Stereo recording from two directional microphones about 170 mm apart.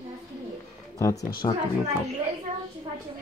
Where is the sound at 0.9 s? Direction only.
20° left (ahead or behind).